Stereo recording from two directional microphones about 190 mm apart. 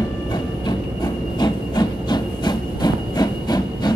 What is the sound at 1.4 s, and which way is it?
Rail transport, 20° left (ahead or behind).